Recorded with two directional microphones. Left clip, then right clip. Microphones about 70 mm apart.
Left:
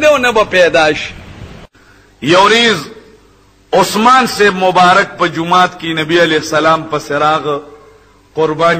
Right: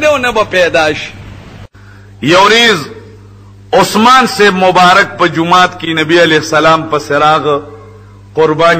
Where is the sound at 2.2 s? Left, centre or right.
Right.